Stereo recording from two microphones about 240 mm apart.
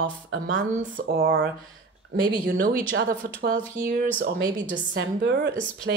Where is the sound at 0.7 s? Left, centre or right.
Right.